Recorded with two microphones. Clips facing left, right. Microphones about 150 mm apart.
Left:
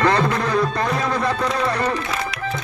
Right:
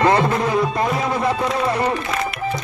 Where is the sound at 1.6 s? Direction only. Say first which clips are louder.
Right 2 dB; 20° right (ahead or behind).